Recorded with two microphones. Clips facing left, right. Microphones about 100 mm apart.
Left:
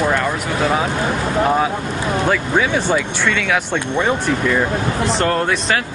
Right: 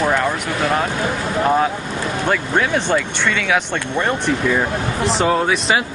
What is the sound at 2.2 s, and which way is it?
Speech, centre (ahead or behind).